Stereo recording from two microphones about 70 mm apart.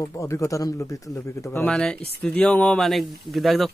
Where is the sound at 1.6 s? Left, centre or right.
Centre.